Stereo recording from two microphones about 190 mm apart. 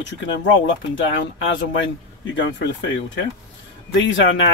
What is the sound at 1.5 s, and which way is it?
Speech, 75° left (ahead or behind).